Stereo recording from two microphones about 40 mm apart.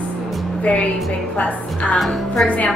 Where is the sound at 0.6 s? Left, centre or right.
Left.